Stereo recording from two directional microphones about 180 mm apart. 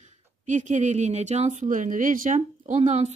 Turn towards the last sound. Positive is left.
turn(degrees=-40)  # may be behind; listen again after turning